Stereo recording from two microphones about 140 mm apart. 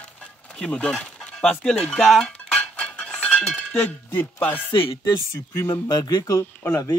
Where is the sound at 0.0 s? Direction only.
10° left (ahead or behind).